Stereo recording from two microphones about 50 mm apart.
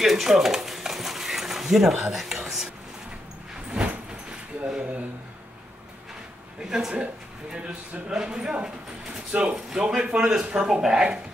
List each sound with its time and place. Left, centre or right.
0.0 s stir: centre
3.8 s door: right
6.6 s speech: centre
8.1 s speech: centre
9.3 s speech: right